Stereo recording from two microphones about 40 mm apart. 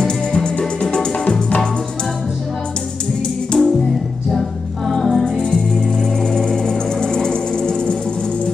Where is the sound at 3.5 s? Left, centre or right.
Centre.